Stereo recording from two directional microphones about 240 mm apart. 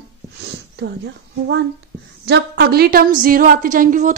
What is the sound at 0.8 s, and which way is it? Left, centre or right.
A woman's voice, right.